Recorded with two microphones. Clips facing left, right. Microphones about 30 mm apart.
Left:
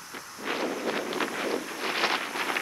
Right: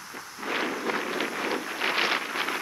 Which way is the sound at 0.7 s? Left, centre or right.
Centre.